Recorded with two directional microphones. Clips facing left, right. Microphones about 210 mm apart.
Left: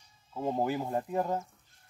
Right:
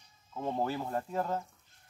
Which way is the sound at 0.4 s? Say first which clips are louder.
Left 3 dB; 15° left (ahead or behind).